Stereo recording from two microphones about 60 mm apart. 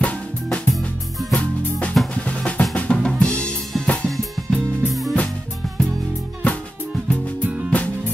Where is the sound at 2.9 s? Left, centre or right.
Centre.